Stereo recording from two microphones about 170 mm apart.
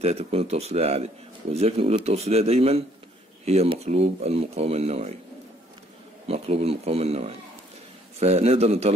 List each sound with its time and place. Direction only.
0.0 s speech: 40° right (ahead or behind)
6.2 s speech: 35° right (ahead or behind)